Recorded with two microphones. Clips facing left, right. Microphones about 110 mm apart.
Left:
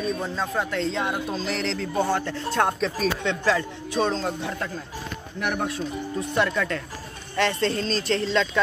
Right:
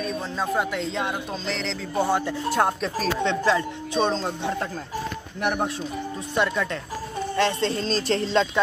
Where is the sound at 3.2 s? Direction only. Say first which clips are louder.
Right 4 dB; 20° right (ahead or behind).